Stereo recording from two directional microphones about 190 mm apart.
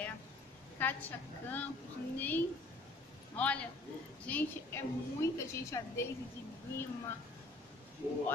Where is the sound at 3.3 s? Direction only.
5° left (ahead or behind).